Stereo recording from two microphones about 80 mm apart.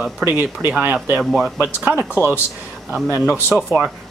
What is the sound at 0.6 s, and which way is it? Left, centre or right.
Speech, centre.